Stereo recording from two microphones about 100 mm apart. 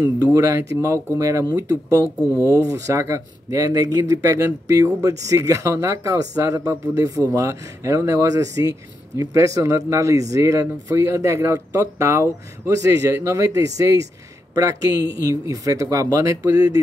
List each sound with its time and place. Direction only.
0.0 s speech: 35° right (ahead or behind)
2.2 s speech: 25° left (ahead or behind)
2.5 s speech: 35° right (ahead or behind)